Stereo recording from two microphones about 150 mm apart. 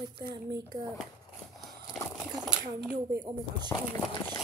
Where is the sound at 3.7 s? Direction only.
20° left (ahead or behind).